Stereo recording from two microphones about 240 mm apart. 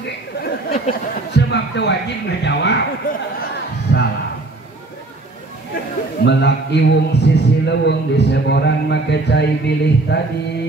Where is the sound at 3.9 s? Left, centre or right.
Left.